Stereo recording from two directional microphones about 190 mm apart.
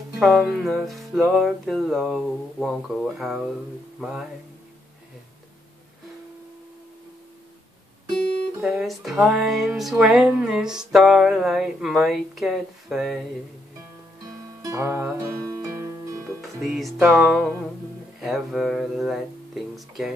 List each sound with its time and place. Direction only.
0.2 s music: centre (ahead or behind)
8.5 s music: centre (ahead or behind)
14.6 s music: 15° right (ahead or behind)
16.3 s music: centre (ahead or behind)